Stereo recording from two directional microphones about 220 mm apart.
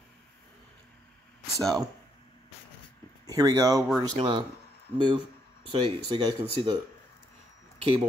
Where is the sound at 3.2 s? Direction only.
15° right (ahead or behind).